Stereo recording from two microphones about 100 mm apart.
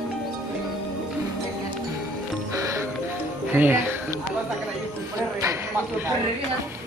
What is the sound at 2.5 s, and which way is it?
Music, 30° right (ahead or behind).